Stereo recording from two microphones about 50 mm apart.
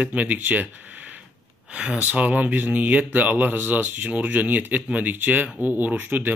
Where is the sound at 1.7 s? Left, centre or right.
Right.